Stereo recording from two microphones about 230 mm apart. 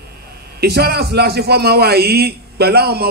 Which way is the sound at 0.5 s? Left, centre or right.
Right.